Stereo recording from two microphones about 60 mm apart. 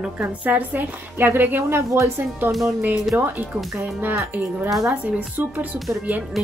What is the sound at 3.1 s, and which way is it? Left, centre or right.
Speech, right.